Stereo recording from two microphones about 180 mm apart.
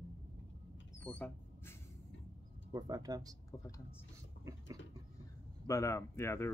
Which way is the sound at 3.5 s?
20° left (ahead or behind).